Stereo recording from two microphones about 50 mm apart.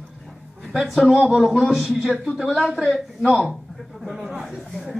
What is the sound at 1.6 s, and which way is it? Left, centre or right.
Speech, centre.